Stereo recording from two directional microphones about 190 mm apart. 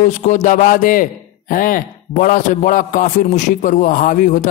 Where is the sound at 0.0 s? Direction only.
40° left (ahead or behind).